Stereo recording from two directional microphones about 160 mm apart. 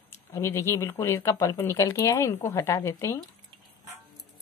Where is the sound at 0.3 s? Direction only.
15° left (ahead or behind).